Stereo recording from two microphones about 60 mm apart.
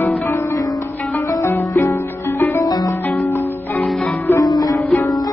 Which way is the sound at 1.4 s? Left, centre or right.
Left.